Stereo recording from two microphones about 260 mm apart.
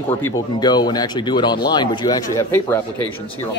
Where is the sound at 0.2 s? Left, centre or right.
Centre.